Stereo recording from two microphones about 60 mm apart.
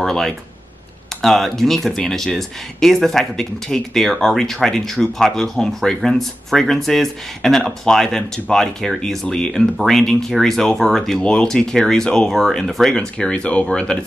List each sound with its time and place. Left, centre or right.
0.0 s speech: centre
12.9 s speech: centre